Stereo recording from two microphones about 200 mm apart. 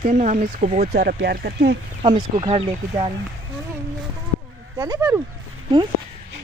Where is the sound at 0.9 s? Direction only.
50° right (ahead or behind).